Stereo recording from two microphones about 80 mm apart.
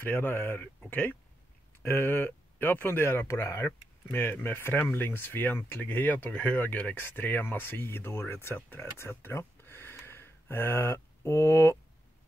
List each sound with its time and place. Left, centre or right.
0.0 s speech: left